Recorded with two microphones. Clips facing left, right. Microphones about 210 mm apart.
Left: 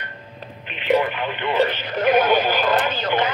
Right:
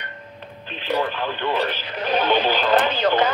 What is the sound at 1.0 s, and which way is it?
Speech, 20° left (ahead or behind).